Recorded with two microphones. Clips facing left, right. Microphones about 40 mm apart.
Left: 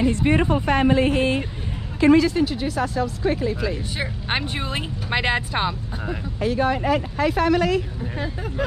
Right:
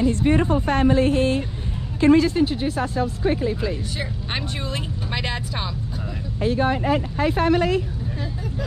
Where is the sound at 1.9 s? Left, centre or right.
Left.